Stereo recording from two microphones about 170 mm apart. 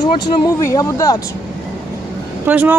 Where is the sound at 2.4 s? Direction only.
10° right (ahead or behind).